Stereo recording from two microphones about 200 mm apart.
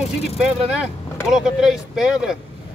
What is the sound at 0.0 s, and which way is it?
Speech, 5° right (ahead or behind).